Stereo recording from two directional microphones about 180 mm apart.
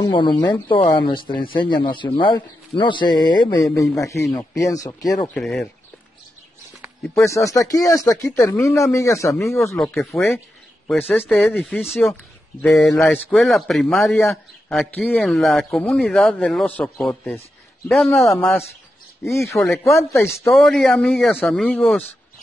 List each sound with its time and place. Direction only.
0.0 s speech: 25° left (ahead or behind)
5.3 s a man's voice: 5° left (ahead or behind)
7.2 s speech: 15° left (ahead or behind)
9.8 s a man's voice: 5° left (ahead or behind)
10.1 s speech: 15° left (ahead or behind)
10.9 s a man's voice: centre (ahead or behind)
19.2 s speech: 15° left (ahead or behind)
19.5 s a man's voice: centre (ahead or behind)